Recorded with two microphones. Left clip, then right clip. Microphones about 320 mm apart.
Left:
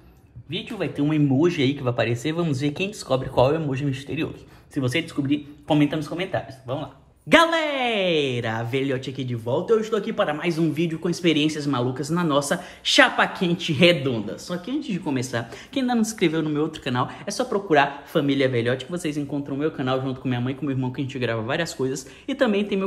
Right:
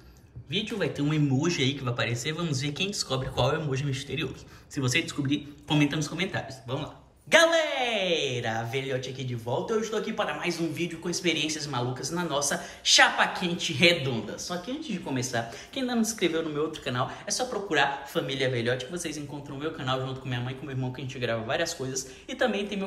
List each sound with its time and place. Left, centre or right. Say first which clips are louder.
1.0 s speech: left 11 dB; centre
4.7 s speech: left 3 dB; centre